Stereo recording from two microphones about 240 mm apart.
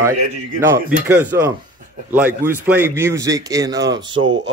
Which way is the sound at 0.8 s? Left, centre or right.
Centre.